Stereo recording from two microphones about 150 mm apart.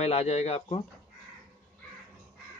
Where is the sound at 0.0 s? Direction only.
45° left (ahead or behind).